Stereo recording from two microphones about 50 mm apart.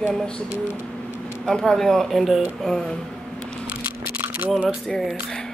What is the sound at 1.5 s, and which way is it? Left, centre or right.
Speech, centre.